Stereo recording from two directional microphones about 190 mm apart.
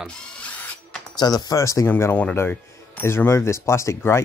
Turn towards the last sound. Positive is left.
turn(degrees=15)  # may be behind; listen again after turning